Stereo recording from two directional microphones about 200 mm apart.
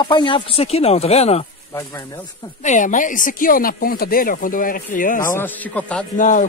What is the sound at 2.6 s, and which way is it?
Speech, 40° left (ahead or behind).